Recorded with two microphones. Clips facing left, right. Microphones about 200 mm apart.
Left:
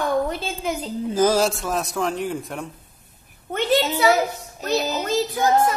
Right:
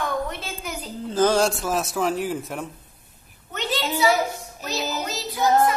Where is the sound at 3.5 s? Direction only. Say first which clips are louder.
Left 6 dB; 55° left (ahead or behind).